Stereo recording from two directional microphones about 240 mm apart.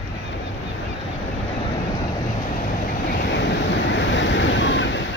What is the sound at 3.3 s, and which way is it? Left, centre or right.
Waves, left.